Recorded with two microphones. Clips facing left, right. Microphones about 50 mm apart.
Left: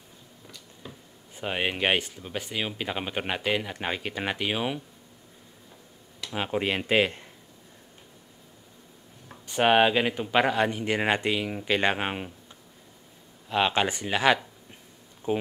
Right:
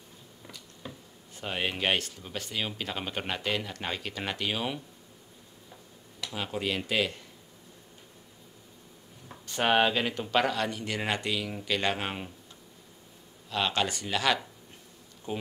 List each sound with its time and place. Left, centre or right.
0.8 s a sound: centre
1.3 s speech: centre
6.3 s speech: left
9.6 s speech: centre
13.5 s speech: left